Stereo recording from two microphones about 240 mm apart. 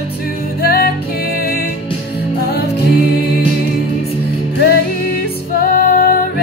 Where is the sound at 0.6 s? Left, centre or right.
Left.